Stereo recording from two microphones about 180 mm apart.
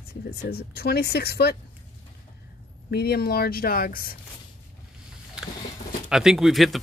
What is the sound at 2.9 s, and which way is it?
Speech, 60° left (ahead or behind).